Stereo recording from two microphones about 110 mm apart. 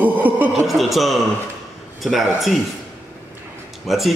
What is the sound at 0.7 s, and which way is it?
Speech, centre (ahead or behind).